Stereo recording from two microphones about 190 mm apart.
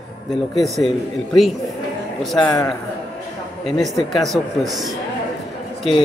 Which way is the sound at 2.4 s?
15° left (ahead or behind).